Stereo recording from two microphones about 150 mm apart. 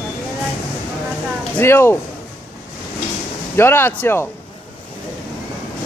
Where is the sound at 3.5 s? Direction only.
15° left (ahead or behind).